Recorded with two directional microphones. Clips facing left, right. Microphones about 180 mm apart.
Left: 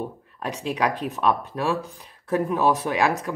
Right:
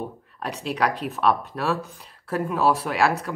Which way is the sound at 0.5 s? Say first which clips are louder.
Even; 15° left (ahead or behind).